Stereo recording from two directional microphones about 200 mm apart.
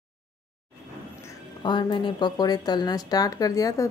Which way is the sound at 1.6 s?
25° left (ahead or behind).